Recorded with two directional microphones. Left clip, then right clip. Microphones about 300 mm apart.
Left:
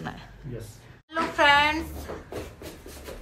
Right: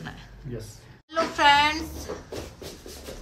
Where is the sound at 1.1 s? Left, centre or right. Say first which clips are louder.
Right 1 dB; centre.